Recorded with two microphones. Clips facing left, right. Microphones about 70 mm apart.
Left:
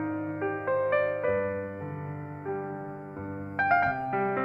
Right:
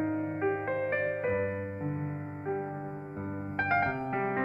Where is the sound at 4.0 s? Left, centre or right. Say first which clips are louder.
Left 3 dB; right.